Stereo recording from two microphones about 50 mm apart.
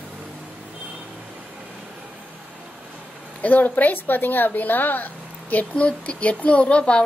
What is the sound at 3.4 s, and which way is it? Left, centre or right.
Speech, left.